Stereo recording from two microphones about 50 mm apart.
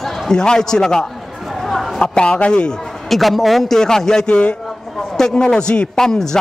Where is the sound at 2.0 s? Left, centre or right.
Centre.